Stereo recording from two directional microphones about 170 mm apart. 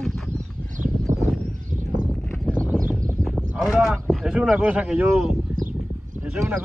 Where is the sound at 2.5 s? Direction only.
10° left (ahead or behind).